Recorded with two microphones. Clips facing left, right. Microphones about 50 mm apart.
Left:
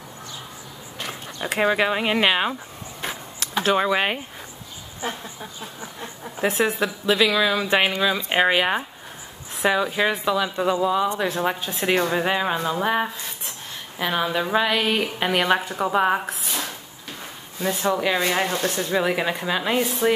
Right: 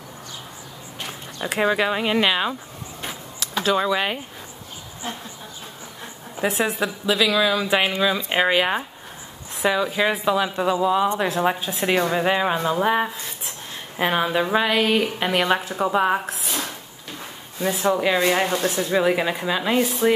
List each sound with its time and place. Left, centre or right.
1.5 s speech: centre
3.0 s a sound: centre
6.3 s speech: centre
7.6 s a woman's voice: centre
13.9 s a woman's voice: right
14.2 s speech: centre
17.6 s speech: centre